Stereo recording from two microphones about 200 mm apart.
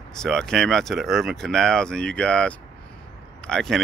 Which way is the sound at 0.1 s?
5° left (ahead or behind).